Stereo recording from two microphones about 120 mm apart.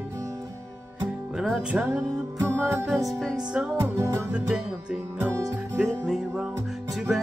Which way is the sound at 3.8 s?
25° right (ahead or behind).